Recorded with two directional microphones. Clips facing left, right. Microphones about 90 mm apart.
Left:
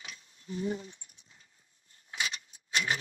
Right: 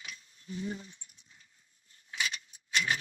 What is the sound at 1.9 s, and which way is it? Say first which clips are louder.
Keys jangling: even; 35° left (ahead or behind).